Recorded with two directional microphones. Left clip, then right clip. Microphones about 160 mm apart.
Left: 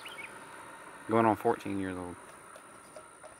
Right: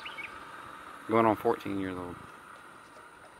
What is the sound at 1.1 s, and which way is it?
Speech, 25° left (ahead or behind).